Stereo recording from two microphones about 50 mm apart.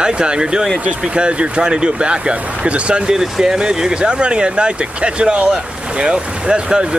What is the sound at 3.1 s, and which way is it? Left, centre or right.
Speech, centre.